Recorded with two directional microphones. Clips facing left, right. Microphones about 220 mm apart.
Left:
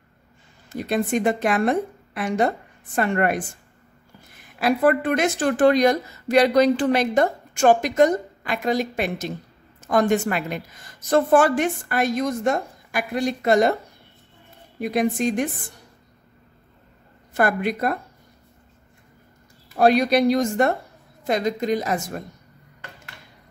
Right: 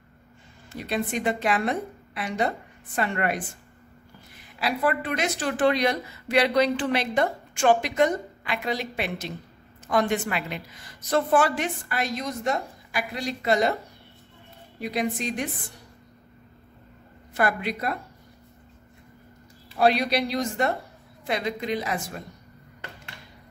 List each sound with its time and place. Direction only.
0.7 s a woman's voice: 50° left (ahead or behind)
14.8 s a woman's voice: 50° left (ahead or behind)
17.3 s a woman's voice: 50° left (ahead or behind)
19.7 s a woman's voice: 45° left (ahead or behind)